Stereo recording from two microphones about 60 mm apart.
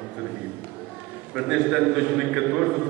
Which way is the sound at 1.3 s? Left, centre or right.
Centre.